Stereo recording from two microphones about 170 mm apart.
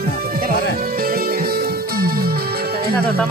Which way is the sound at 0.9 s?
60° right (ahead or behind).